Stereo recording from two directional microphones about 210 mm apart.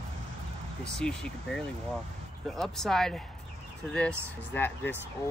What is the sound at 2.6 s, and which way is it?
Speech, centre (ahead or behind).